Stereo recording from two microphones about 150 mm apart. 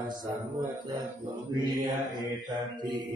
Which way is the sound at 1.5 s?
25° right (ahead or behind).